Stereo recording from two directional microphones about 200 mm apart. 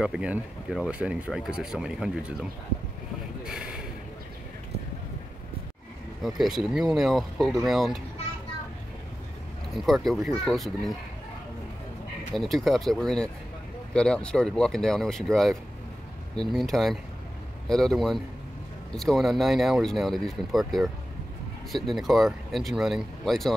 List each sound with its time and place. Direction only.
0.0 s speech: 5° right (ahead or behind)
3.4 s a sound: 5° right (ahead or behind)
6.2 s speech: centre (ahead or behind)
9.8 s speech: centre (ahead or behind)
12.4 s speech: centre (ahead or behind)